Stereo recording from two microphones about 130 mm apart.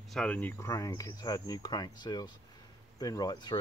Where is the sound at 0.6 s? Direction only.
25° left (ahead or behind).